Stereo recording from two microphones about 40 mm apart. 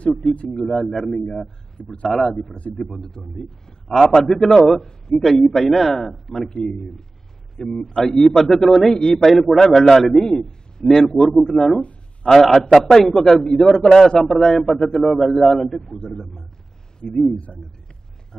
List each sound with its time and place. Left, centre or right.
0.5 s a man's voice: centre
1.8 s a man's voice: left
2.1 s a man's voice: centre
6.5 s a man's voice: centre